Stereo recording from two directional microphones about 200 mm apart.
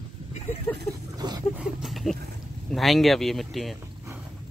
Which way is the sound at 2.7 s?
Centre (ahead or behind).